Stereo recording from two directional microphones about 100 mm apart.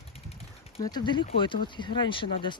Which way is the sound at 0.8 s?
45° left (ahead or behind).